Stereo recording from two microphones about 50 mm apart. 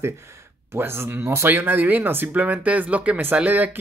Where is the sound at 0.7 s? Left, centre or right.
Right.